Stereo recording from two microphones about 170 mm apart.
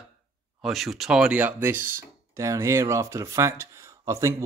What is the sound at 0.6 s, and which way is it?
Speech, centre (ahead or behind).